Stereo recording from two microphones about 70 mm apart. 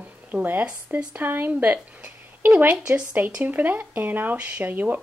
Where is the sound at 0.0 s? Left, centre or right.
Right.